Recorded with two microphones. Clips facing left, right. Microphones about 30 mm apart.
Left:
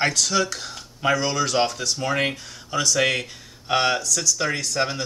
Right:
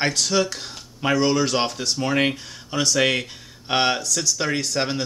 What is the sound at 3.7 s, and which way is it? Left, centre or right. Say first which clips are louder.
Speech: even; right.